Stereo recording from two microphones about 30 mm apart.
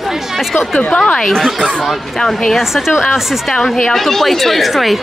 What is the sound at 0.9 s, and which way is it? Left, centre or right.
Speech, left.